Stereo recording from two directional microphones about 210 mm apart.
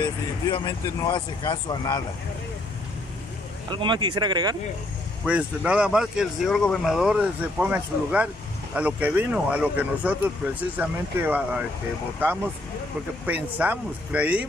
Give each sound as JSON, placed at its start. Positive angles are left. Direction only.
{"t": 0.0, "sound": "speech", "side_deg": 20}
{"t": 3.7, "sound": "speech", "side_deg": -20}
{"t": 5.2, "sound": "speech", "side_deg": -5}
{"t": 13.3, "sound": "speech", "side_deg": -5}